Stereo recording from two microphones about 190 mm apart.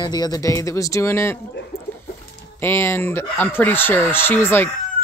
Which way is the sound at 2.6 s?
10° left (ahead or behind).